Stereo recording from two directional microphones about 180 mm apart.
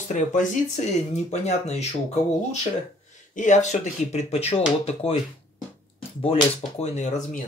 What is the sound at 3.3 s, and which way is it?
Speech, 45° left (ahead or behind).